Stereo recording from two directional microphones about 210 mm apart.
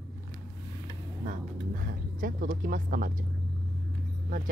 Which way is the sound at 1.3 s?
40° right (ahead or behind).